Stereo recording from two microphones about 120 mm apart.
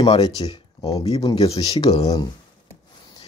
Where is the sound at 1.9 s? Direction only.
30° left (ahead or behind).